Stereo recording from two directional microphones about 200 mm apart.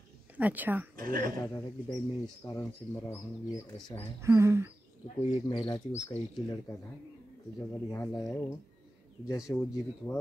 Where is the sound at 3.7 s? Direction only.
25° left (ahead or behind).